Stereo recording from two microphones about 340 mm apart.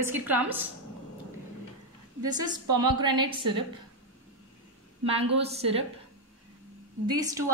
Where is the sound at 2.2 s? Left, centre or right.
Centre.